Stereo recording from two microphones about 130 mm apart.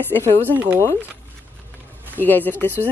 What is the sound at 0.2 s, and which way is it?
Speech, 15° right (ahead or behind).